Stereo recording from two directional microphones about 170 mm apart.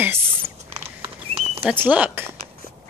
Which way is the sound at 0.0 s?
10° right (ahead or behind).